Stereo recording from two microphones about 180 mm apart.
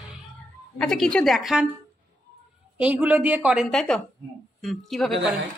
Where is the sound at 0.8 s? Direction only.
5° left (ahead or behind).